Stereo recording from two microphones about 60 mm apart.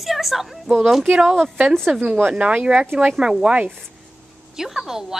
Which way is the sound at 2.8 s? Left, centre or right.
Right.